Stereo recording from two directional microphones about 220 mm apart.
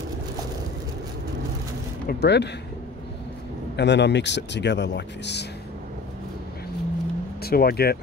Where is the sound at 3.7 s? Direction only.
50° left (ahead or behind).